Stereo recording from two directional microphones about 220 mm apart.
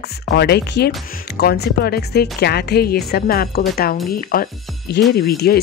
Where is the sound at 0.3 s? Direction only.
45° left (ahead or behind).